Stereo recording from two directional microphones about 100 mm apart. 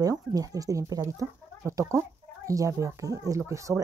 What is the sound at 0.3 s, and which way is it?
Speech, 40° right (ahead or behind).